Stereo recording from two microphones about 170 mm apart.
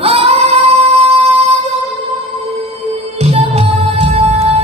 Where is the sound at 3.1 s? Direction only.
40° right (ahead or behind).